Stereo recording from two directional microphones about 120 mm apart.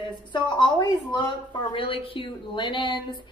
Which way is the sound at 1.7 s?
45° left (ahead or behind).